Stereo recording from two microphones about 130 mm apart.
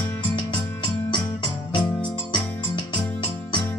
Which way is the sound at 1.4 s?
40° left (ahead or behind).